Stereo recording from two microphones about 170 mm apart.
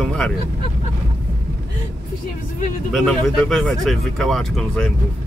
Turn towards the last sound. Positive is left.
turn(degrees=5)  # may be behind; listen again after turning